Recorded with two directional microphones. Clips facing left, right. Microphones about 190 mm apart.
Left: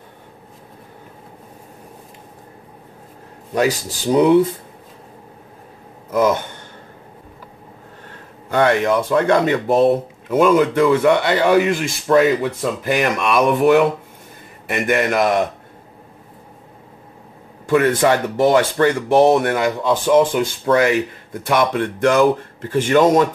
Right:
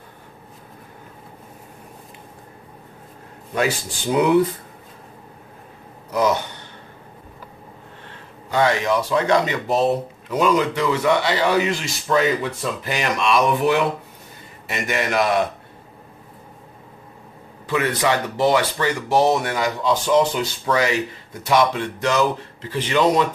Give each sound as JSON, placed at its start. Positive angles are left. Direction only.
{"t": 3.5, "sound": "speech", "side_deg": 35}
{"t": 6.0, "sound": "a sound", "side_deg": 50}
{"t": 8.5, "sound": "speech", "side_deg": 55}
{"t": 17.6, "sound": "speech", "side_deg": 50}